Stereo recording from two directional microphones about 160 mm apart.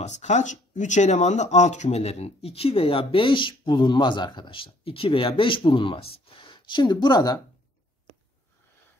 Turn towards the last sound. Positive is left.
turn(degrees=25)  # may be behind; listen again after turning